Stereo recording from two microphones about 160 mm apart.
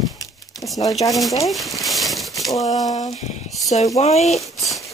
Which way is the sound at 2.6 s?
20° left (ahead or behind).